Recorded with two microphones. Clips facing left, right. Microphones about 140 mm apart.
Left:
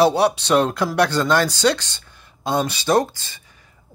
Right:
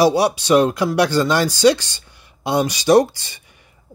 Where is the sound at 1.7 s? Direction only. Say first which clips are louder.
Right 2 dB; 60° left (ahead or behind).